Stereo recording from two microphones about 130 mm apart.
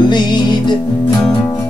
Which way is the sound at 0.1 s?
35° left (ahead or behind).